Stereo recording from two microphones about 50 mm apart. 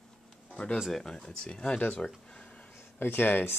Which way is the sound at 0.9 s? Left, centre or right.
Centre.